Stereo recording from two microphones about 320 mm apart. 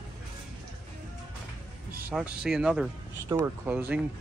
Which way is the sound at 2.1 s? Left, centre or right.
Centre.